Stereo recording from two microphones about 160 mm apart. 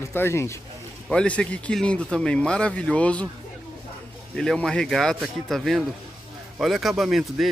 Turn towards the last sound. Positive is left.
turn(degrees=0)  # may be behind; listen again after turning